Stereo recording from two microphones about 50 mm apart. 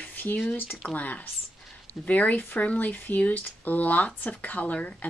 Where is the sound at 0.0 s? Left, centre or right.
Left.